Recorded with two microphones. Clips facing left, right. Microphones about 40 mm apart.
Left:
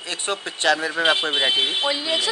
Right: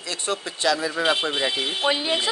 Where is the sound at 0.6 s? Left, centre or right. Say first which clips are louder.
Left 3 dB; left.